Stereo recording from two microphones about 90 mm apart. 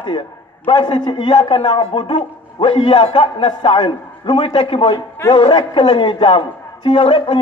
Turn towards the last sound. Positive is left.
turn(degrees=75)  # may be behind; listen again after turning